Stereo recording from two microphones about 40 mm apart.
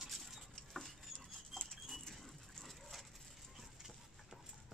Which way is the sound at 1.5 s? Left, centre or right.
Centre.